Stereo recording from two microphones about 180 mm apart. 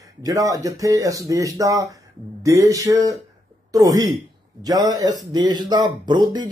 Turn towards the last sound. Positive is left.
turn(degrees=-25)  # may be behind; listen again after turning